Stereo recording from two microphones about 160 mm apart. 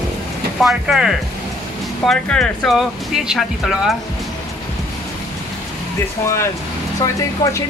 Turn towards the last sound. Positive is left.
turn(degrees=20)  # may be behind; listen again after turning